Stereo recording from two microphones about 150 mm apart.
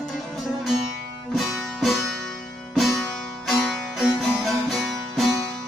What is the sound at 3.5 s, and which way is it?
Music, centre (ahead or behind).